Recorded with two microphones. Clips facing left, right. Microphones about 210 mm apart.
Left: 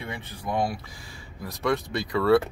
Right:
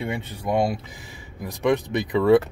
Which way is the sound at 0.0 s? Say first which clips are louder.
Right 6 dB; 25° right (ahead or behind).